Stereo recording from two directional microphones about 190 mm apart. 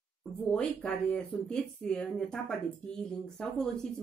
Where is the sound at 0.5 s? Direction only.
5° left (ahead or behind).